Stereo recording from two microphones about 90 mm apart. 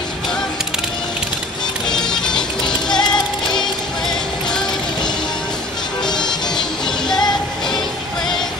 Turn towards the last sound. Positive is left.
turn(degrees=50)  # may be behind; listen again after turning